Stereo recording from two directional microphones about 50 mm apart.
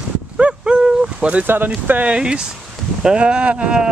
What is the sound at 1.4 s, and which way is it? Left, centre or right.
Speech, right.